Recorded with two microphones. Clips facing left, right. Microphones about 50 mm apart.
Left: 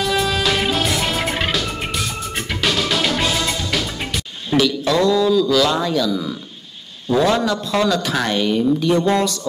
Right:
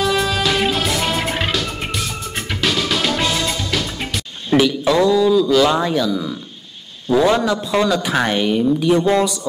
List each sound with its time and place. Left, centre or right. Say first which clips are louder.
0.0 s music: right 1 dB; centre
4.5 s speech: right 2 dB; centre